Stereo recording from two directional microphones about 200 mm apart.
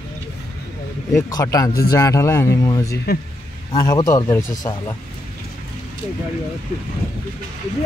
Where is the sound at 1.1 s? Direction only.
15° left (ahead or behind).